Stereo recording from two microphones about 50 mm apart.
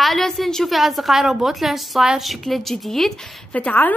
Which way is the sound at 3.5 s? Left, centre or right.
Left.